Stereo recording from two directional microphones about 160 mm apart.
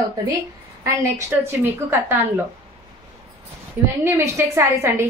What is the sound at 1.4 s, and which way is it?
A woman's voice, 15° right (ahead or behind).